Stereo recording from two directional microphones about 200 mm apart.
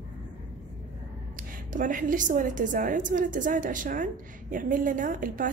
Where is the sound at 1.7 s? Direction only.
40° right (ahead or behind).